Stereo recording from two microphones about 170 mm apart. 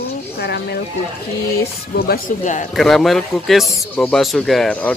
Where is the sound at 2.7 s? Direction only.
Centre (ahead or behind).